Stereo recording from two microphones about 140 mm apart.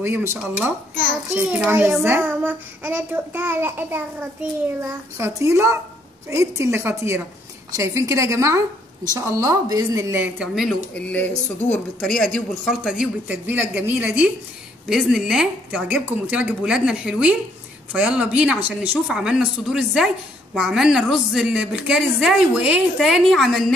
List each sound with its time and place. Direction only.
0.0 s a child's voice: 20° right (ahead or behind)
11.0 s a child's voice: 10° left (ahead or behind)